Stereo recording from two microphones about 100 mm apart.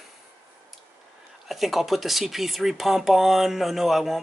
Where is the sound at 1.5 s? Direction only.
Centre (ahead or behind).